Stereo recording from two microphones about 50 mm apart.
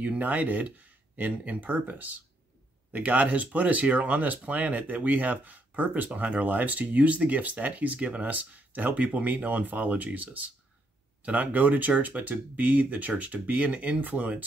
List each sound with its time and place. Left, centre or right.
0.0 s speech: right